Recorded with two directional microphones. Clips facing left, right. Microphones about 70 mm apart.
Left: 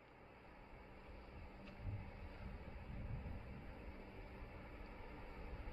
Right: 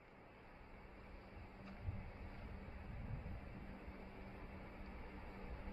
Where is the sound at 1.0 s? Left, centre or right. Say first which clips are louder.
Even; right.